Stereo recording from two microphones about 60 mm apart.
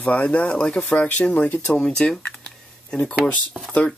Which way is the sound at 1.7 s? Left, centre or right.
Centre.